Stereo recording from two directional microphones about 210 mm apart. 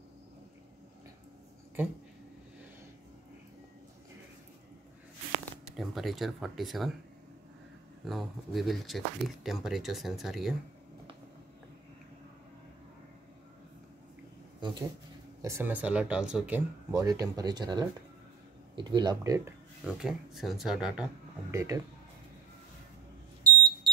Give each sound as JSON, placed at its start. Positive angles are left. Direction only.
{"t": 5.4, "sound": "speech", "side_deg": 0}
{"t": 8.0, "sound": "speech", "side_deg": 0}
{"t": 14.6, "sound": "speech", "side_deg": -20}
{"t": 15.4, "sound": "speech", "side_deg": -10}
{"t": 19.8, "sound": "speech", "side_deg": 0}
{"t": 21.5, "sound": "speech", "side_deg": -15}